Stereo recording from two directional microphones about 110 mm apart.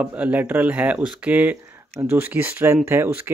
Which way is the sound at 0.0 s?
15° right (ahead or behind).